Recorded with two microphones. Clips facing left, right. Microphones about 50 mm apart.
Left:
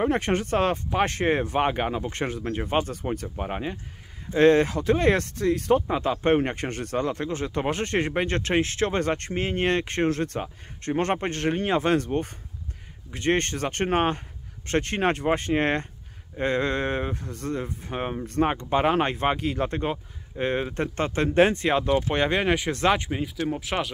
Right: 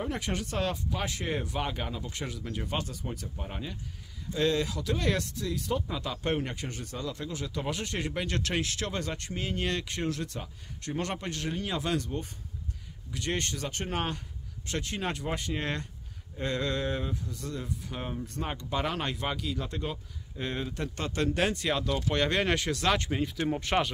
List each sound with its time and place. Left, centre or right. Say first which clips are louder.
0.0 s speech: left 9 dB; left; by 22.7 s centre
22.7 s speech: left 6 dB; left
22.9 s speech: left 2 dB; centre